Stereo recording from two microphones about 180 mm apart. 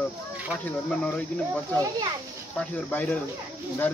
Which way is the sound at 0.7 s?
5° left (ahead or behind).